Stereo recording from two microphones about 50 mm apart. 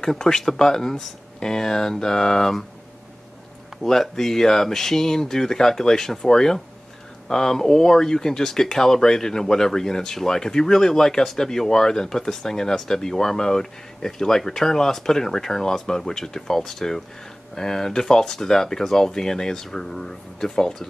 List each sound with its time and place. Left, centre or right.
0.0 s speech: centre
3.8 s speech: centre